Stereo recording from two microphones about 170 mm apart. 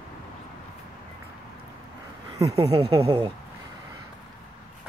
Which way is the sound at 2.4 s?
40° right (ahead or behind).